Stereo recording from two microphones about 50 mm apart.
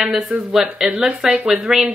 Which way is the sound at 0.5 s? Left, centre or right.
Centre.